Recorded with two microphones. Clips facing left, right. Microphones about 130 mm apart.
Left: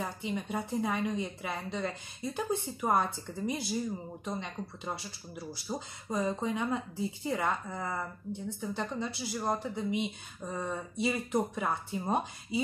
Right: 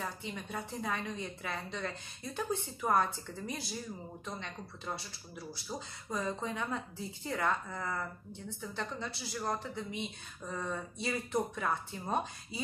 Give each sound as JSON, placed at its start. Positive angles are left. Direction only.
{"t": 0.0, "sound": "speech", "side_deg": 15}